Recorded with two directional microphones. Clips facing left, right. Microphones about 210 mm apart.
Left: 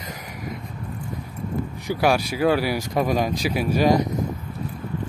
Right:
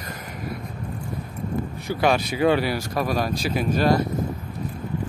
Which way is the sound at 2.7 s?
20° left (ahead or behind).